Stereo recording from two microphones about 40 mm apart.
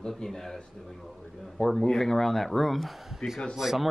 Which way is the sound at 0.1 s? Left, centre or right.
Centre.